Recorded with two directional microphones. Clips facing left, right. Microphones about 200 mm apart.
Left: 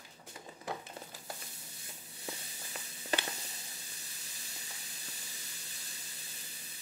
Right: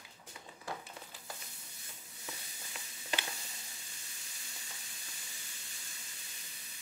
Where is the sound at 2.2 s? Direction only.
40° left (ahead or behind).